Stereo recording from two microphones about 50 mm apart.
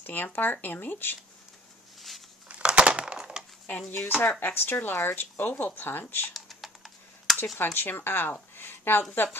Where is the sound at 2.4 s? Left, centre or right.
Right.